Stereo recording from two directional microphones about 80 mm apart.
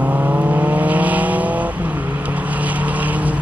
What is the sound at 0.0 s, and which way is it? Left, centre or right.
Vehicle, centre.